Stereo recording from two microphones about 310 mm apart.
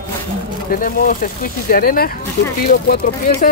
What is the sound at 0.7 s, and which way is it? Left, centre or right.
Speech, left.